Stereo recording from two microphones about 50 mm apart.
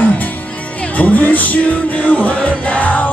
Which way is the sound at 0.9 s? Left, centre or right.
Left.